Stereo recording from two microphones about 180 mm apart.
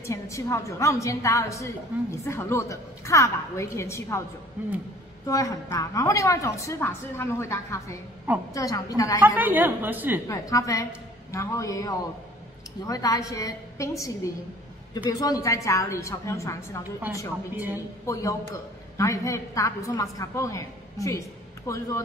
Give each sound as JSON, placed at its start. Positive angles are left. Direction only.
{"t": 0.0, "sound": "a woman's voice", "side_deg": 15}
{"t": 4.6, "sound": "a woman's voice", "side_deg": -10}
{"t": 5.2, "sound": "a woman's voice", "side_deg": 20}
{"t": 9.2, "sound": "a woman's voice", "side_deg": -10}
{"t": 10.2, "sound": "a woman's voice", "side_deg": 20}